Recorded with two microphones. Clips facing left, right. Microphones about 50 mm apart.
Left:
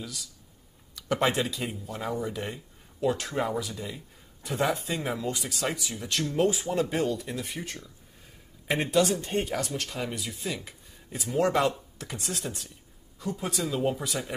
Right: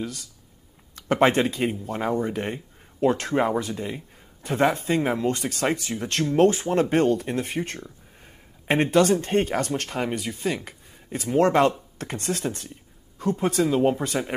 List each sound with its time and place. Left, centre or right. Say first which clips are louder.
0.0 s speech: right 7 dB; right
13.7 s speech: right 7 dB; right